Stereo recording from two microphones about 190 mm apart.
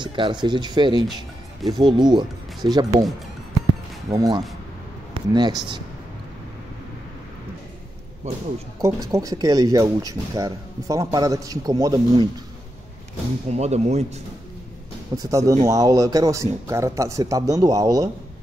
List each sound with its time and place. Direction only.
0.0 s speech: 25° right (ahead or behind)
4.1 s speech: 20° right (ahead or behind)
8.8 s speech: 15° right (ahead or behind)
13.5 s speech: 35° right (ahead or behind)
15.1 s speech: 15° right (ahead or behind)